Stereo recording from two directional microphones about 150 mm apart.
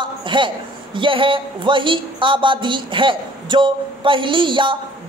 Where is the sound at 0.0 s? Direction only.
35° right (ahead or behind).